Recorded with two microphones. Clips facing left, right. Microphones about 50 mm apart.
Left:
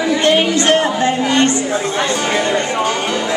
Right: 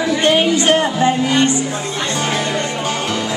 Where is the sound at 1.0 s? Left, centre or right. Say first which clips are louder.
Even; centre.